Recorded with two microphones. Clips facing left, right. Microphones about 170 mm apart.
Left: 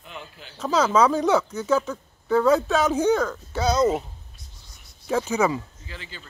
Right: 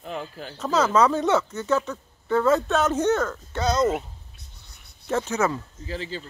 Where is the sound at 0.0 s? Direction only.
40° right (ahead or behind).